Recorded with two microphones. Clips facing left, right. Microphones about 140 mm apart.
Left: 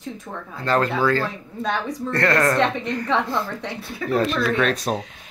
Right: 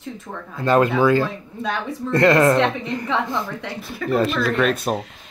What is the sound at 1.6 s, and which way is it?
Speech, centre (ahead or behind).